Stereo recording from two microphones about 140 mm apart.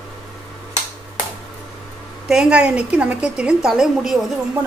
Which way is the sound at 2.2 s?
5° right (ahead or behind).